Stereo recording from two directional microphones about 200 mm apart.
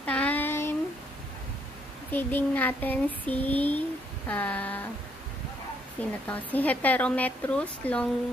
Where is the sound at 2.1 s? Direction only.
10° left (ahead or behind).